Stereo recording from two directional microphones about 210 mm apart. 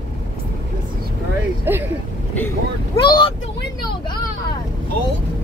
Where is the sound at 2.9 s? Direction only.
20° left (ahead or behind).